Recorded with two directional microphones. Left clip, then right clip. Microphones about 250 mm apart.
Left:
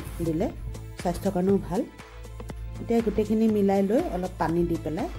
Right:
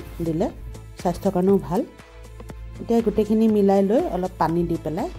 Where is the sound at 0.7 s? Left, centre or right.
Centre.